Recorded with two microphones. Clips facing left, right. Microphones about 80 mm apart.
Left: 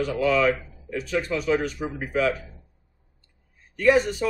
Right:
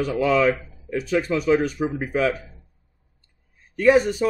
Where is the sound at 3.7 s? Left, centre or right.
Centre.